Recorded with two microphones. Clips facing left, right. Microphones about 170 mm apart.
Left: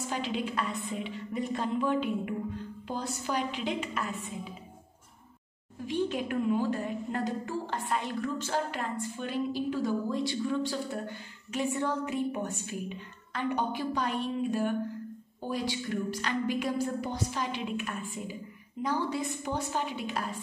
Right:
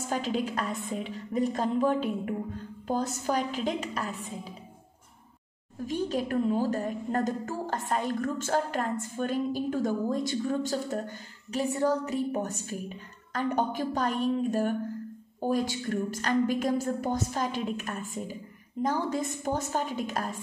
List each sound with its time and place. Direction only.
0.0 s a woman's voice: 45° right (ahead or behind)
5.9 s a woman's voice: 40° right (ahead or behind)